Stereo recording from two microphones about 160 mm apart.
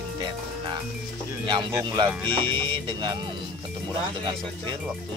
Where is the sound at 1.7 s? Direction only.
20° right (ahead or behind).